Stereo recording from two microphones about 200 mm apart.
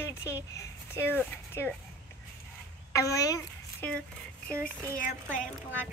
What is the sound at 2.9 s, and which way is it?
A woman's voice, 15° left (ahead or behind).